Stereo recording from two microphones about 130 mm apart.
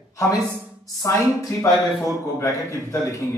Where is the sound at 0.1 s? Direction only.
25° left (ahead or behind).